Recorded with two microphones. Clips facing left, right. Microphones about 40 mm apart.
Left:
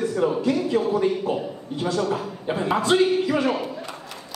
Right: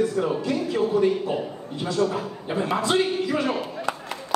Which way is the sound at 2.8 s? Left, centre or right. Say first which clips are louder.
Left 5 dB; left.